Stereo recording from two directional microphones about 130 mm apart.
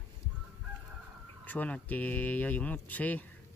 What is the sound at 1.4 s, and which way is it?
Speech, 10° left (ahead or behind).